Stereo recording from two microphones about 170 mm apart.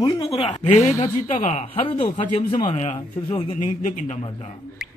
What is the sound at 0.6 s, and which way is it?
Speech, 40° left (ahead or behind).